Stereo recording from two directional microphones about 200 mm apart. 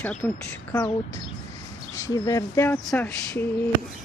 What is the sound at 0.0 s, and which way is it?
Speech, 5° left (ahead or behind).